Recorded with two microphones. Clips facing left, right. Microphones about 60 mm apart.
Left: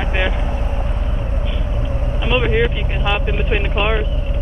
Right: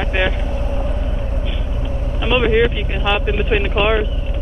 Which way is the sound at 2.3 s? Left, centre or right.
Centre.